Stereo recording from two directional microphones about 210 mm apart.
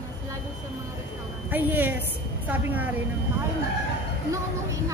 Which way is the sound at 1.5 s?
10° right (ahead or behind).